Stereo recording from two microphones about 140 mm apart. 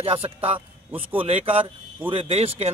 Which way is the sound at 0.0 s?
40° right (ahead or behind).